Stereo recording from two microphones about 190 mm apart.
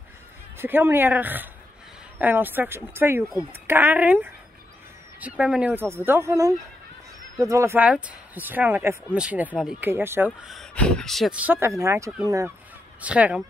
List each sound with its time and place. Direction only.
0.6 s speech: 10° right (ahead or behind)
10.4 s speech: centre (ahead or behind)